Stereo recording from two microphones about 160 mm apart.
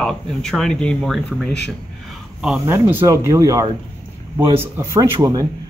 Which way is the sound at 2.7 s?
15° right (ahead or behind).